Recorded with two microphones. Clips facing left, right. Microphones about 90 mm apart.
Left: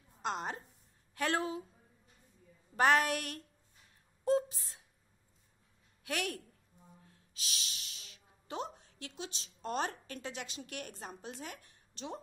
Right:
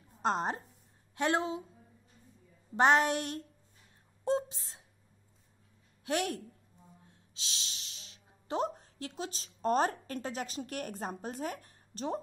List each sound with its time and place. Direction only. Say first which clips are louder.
0.2 s a woman's voice: right 6 dB; 35° right (ahead or behind)
1.1 s a woman's voice: right 3 dB; 25° right (ahead or behind)
2.7 s a woman's voice: right 3 dB; 25° right (ahead or behind)
6.0 s a woman's voice: right 5 dB; 30° right (ahead or behind)